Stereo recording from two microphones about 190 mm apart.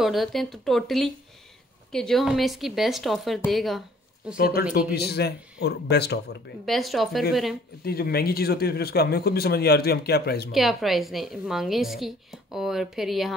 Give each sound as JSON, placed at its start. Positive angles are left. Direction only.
{"t": 0.0, "sound": "a woman's voice", "side_deg": 0}
{"t": 4.4, "sound": "speech", "side_deg": 50}
{"t": 6.6, "sound": "a woman's voice", "side_deg": 0}
{"t": 7.8, "sound": "speech", "side_deg": 55}
{"t": 10.5, "sound": "a woman's voice", "side_deg": 0}